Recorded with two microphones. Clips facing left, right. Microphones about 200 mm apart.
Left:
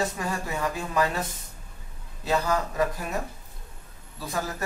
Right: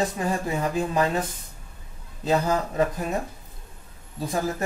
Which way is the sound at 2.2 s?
25° right (ahead or behind).